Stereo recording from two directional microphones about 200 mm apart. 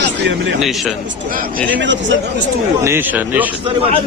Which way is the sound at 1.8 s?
65° right (ahead or behind).